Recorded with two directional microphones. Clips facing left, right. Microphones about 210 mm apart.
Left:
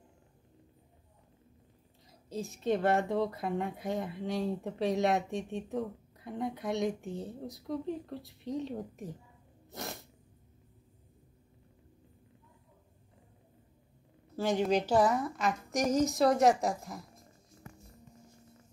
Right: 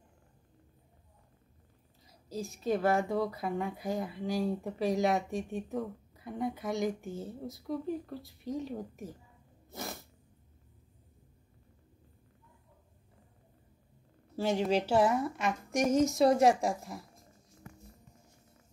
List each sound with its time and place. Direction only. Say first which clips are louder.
2.0 s a woman's voice: even; centre (ahead or behind)
9.7 s a sound: even; centre (ahead or behind)
14.6 s a woman's voice: even; 5° right (ahead or behind)
15.9 s a woman's voice: right 1 dB; 25° right (ahead or behind)